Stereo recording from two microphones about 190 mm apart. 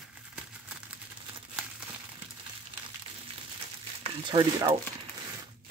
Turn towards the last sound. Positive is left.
turn(degrees=-20)  # may be behind; listen again after turning